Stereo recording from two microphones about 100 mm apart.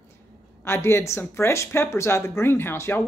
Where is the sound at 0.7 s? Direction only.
25° left (ahead or behind).